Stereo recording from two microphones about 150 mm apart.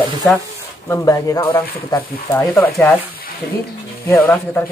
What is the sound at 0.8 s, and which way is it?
Speech, 20° left (ahead or behind).